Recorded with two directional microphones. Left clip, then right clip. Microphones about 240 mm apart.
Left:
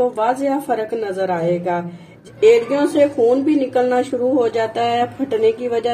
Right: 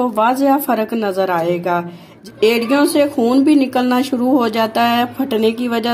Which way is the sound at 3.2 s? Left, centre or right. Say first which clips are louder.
Right 2 dB; right.